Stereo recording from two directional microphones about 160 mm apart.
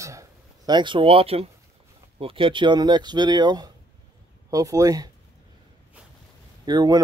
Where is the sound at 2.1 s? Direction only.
35° right (ahead or behind).